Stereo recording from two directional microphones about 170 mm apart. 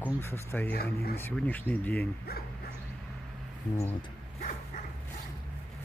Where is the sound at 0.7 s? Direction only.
65° left (ahead or behind).